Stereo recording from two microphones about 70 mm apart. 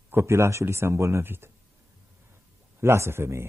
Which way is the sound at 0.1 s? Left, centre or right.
Right.